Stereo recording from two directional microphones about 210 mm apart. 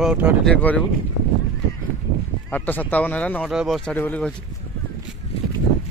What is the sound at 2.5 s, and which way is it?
Speech, 10° left (ahead or behind).